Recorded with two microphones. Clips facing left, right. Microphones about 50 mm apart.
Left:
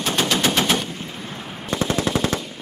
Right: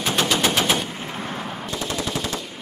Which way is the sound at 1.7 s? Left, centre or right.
Left.